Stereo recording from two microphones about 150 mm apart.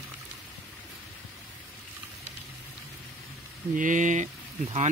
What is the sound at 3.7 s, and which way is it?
Speech, 60° right (ahead or behind).